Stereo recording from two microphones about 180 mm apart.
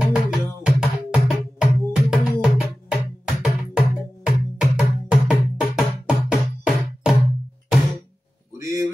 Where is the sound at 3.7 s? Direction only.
5° right (ahead or behind).